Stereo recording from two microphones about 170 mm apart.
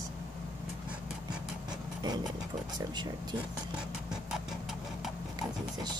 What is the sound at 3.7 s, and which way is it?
Vehicle, 5° right (ahead or behind).